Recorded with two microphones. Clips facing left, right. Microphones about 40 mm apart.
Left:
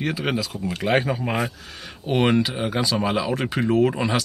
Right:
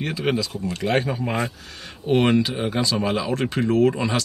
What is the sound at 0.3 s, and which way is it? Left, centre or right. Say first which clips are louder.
Speech: right 2 dB; centre.